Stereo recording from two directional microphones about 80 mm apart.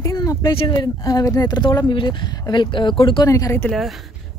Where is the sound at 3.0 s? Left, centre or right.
Left.